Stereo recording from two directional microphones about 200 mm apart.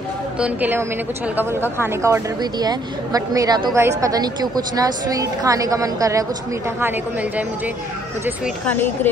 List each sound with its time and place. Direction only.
0.4 s a woman's voice: 10° right (ahead or behind)
8.6 s speech: 10° left (ahead or behind)